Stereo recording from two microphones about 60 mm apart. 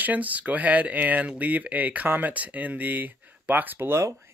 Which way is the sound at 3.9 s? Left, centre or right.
Right.